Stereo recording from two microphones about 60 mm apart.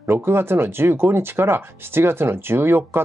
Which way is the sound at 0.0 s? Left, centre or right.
Right.